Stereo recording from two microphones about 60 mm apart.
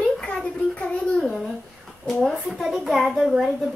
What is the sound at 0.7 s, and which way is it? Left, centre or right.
Speech, left.